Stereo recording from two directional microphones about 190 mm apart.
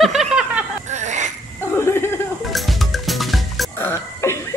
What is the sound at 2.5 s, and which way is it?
Drum kit, centre (ahead or behind).